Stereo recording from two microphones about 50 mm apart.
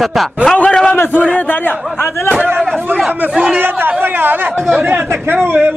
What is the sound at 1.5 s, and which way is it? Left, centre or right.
Speech, left.